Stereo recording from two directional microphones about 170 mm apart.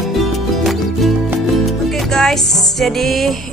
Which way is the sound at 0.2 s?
Centre (ahead or behind).